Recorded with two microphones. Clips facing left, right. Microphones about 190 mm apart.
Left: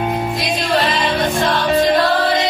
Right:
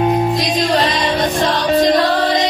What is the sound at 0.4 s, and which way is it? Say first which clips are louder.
Music: right 2 dB; 40° right (ahead or behind).